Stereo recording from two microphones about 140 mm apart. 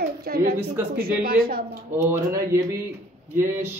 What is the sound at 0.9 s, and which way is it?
Speech, 90° right.